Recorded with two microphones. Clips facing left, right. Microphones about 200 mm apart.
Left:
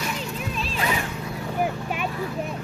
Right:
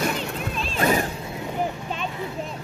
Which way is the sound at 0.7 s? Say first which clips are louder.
Right 6 dB; 45° right (ahead or behind).